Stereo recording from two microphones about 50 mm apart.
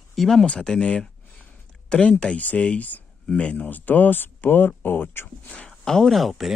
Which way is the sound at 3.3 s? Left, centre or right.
Centre.